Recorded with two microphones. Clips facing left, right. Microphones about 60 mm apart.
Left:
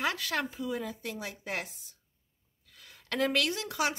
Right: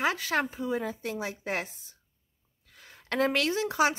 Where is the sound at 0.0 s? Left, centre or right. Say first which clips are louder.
Right 4 dB; right.